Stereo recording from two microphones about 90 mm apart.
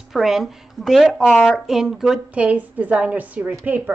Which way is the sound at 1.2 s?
10° left (ahead or behind).